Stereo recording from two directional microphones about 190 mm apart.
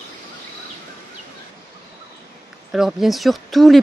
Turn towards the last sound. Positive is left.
turn(degrees=0)  # may be behind; listen again after turning